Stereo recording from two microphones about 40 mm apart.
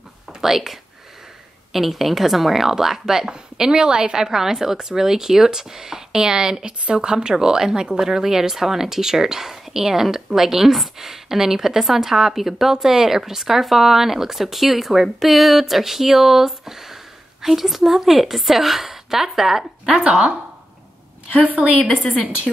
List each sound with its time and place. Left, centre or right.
0.4 s speech: centre
19.9 s speech: right
21.3 s a woman's voice: right